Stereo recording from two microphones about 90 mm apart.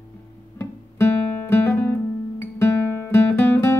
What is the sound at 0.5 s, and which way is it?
Guitar, 25° left (ahead or behind).